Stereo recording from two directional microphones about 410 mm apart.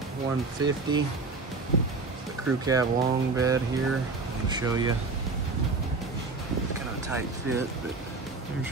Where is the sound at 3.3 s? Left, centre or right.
Centre.